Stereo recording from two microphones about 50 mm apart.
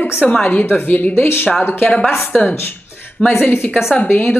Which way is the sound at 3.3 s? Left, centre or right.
Left.